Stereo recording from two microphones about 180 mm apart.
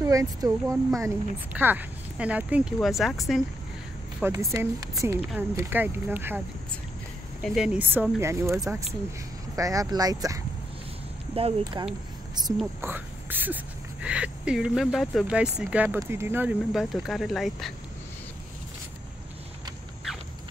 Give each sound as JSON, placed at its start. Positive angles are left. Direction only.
{"t": 0.0, "sound": "speech", "side_deg": -20}
{"t": 4.2, "sound": "speech", "side_deg": -15}
{"t": 7.4, "sound": "speech", "side_deg": -5}
{"t": 12.8, "sound": "speech", "side_deg": -10}